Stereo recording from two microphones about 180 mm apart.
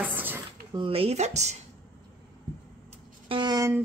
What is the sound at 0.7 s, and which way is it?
Speech, 30° right (ahead or behind).